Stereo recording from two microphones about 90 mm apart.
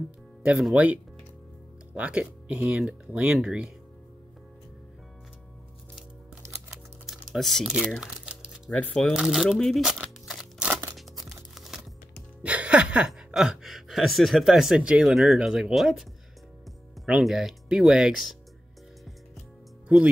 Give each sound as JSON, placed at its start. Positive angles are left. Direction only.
{"t": 0.7, "sound": "speech", "side_deg": -15}
{"t": 7.3, "sound": "speech", "side_deg": 5}
{"t": 7.6, "sound": "speech", "side_deg": -10}
{"t": 8.0, "sound": "a sound", "side_deg": -10}
{"t": 8.6, "sound": "speech", "side_deg": 15}
{"t": 9.1, "sound": "speech", "side_deg": -5}
{"t": 9.6, "sound": "a sound", "side_deg": 0}
{"t": 10.7, "sound": "tearing", "side_deg": -30}
{"t": 11.0, "sound": "music", "side_deg": 0}
{"t": 12.4, "sound": "speech", "side_deg": -15}